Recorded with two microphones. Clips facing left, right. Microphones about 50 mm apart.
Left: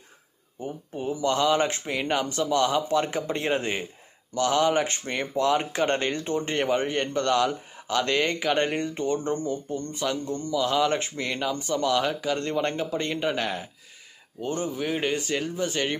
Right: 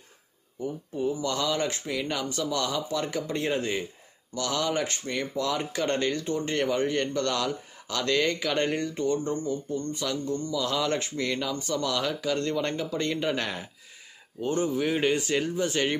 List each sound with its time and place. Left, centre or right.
0.9 s a man's voice: left
9.2 s speech: left
10.5 s a man's voice: centre
13.3 s speech: centre